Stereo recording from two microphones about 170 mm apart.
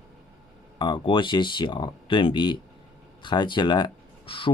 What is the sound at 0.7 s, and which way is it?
Speech, 25° left (ahead or behind).